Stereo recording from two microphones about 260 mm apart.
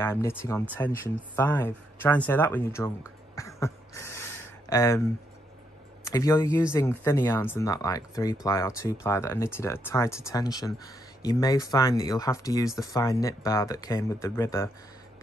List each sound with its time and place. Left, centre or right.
0.0 s speech: centre
3.3 s a sound: centre
6.0 s speech: centre